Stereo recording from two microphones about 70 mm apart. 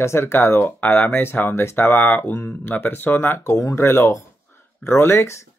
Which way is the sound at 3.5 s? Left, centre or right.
Left.